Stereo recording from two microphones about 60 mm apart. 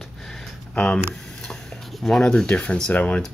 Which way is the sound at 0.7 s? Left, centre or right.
Centre.